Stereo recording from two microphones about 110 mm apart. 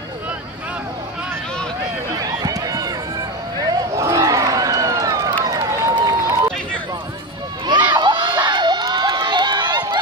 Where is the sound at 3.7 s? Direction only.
30° right (ahead or behind).